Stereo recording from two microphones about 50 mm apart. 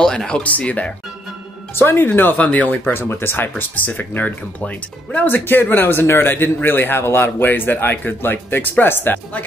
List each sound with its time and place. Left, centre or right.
0.0 s a sound: centre
0.4 s speech: left
1.8 s a man's voice: left
2.0 s speech: left
2.9 s a man's voice: left